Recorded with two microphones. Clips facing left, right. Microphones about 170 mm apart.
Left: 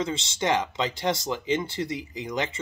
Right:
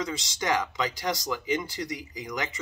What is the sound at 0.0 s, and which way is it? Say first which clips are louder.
Speech: left 4 dB; 25° left (ahead or behind).